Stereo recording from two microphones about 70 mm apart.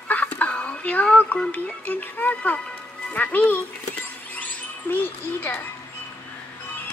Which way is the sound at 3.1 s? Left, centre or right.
Left.